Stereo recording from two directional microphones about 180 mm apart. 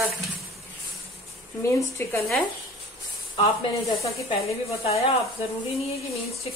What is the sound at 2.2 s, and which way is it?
Speech, centre (ahead or behind).